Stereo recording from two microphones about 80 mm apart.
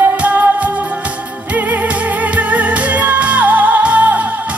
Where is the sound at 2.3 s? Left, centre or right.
Centre.